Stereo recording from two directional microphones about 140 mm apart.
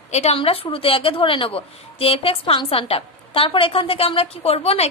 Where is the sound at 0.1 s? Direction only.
45° left (ahead or behind).